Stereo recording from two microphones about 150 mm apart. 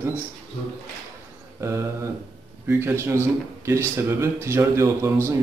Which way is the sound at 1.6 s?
20° right (ahead or behind).